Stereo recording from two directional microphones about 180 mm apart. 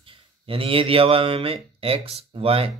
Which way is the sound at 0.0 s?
30° right (ahead or behind).